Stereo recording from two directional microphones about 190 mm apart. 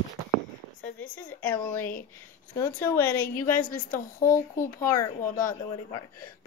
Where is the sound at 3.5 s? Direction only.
45° left (ahead or behind).